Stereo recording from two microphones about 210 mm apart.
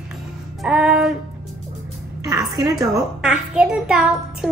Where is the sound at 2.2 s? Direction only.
15° right (ahead or behind).